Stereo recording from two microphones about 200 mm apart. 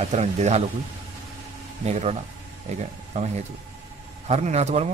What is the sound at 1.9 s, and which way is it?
Speech, 35° right (ahead or behind).